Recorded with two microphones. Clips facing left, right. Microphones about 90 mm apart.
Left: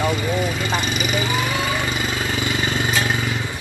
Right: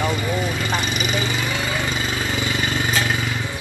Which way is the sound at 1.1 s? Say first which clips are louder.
Left 2 dB; 20° left (ahead or behind).